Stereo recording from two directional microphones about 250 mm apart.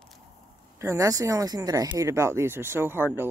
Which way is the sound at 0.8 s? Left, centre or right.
Centre.